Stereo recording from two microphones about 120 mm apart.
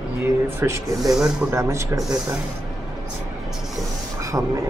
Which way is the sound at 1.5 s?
25° right (ahead or behind).